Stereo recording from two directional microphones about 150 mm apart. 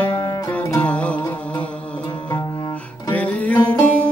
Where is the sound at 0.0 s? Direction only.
15° left (ahead or behind).